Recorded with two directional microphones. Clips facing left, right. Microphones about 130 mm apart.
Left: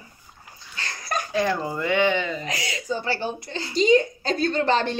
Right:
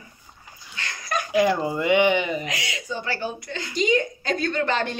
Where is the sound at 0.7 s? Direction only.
35° left (ahead or behind).